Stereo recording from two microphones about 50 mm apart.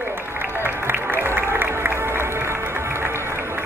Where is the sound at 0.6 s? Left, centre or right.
Right.